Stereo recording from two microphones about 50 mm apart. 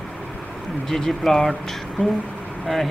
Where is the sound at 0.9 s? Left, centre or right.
Centre.